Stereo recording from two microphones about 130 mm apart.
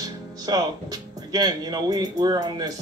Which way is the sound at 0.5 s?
30° right (ahead or behind).